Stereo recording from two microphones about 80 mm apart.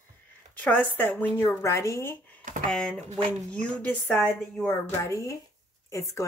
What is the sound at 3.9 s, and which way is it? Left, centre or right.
Speech, left.